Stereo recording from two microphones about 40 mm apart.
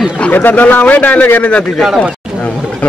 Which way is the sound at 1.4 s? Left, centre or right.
Left.